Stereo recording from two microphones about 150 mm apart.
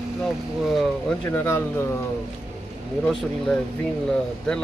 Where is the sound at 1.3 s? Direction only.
15° left (ahead or behind).